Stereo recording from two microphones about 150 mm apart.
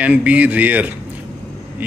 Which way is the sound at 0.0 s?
10° right (ahead or behind).